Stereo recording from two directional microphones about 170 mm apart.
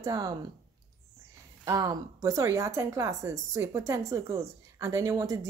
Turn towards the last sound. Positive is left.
turn(degrees=-20)  # may be behind; listen again after turning